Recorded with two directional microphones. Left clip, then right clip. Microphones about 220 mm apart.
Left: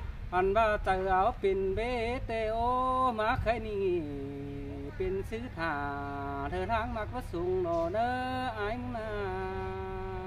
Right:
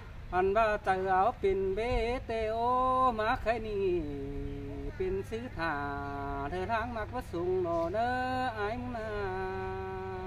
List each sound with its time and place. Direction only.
0.3 s speech: 5° right (ahead or behind)
5.0 s speech: 5° right (ahead or behind)